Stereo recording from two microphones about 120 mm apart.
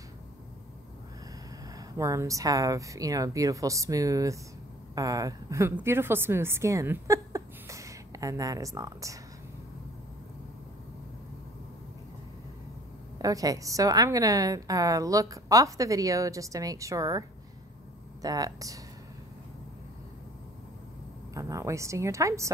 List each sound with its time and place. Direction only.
1.8 s a woman's voice: 25° right (ahead or behind)
13.2 s a woman's voice: 30° right (ahead or behind)
18.2 s speech: 30° right (ahead or behind)
21.3 s a woman's voice: 25° right (ahead or behind)